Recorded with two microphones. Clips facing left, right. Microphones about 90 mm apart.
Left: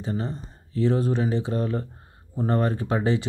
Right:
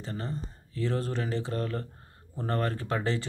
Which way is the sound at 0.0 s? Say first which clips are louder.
Left 6 dB; 20° left (ahead or behind).